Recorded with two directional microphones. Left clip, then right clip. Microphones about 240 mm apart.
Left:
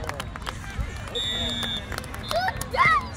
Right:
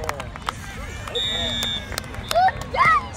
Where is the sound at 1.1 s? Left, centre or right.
Right.